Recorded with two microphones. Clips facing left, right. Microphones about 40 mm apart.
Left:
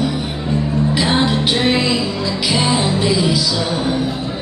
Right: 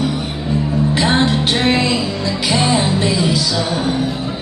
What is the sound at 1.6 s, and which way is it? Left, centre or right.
Music, centre.